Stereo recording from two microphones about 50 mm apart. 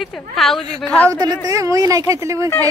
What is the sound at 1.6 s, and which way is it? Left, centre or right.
Speech, right.